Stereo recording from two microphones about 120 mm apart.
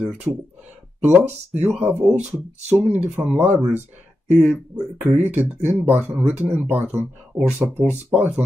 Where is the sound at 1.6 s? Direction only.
15° right (ahead or behind).